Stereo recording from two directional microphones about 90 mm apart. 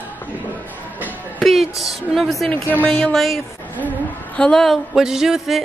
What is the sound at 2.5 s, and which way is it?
Speech, 20° left (ahead or behind).